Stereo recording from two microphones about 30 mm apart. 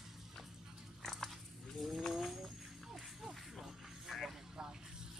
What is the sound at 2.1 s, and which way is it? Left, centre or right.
Bird, centre.